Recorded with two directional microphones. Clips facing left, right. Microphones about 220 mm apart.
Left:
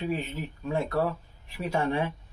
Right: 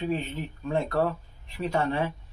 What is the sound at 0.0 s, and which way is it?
Speech, 10° left (ahead or behind).